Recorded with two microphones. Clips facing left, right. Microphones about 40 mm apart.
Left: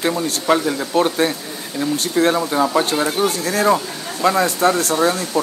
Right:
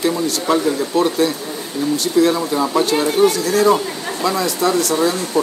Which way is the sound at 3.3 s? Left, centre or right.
Left.